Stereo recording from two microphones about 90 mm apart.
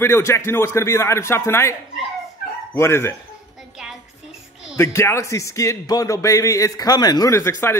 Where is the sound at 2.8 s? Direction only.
30° left (ahead or behind).